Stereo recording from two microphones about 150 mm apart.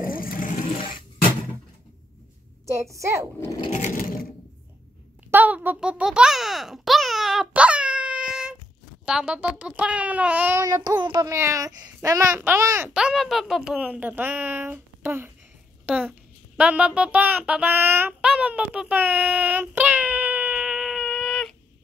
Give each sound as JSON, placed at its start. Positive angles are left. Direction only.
{"t": 0.2, "sound": "a sound", "side_deg": 70}
{"t": 2.7, "sound": "a child's voice", "side_deg": -20}
{"t": 3.3, "sound": "speech", "side_deg": 20}
{"t": 3.7, "sound": "sewing machine", "side_deg": 50}
{"t": 5.3, "sound": "a sound", "side_deg": -10}
{"t": 9.0, "sound": "speech", "side_deg": -5}
{"t": 10.6, "sound": "a child's voice", "side_deg": -20}
{"t": 12.9, "sound": "speech", "side_deg": -5}